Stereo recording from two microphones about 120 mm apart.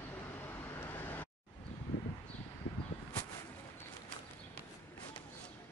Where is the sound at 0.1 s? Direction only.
20° left (ahead or behind).